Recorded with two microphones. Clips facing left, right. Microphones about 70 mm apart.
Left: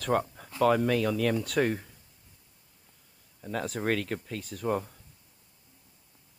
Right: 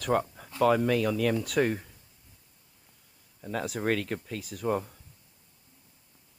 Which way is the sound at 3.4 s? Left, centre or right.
Centre.